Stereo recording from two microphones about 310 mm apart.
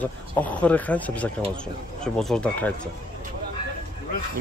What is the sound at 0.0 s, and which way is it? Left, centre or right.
Speech, centre.